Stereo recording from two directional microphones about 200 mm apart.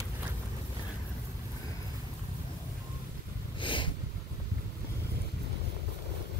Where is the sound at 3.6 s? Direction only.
25° left (ahead or behind).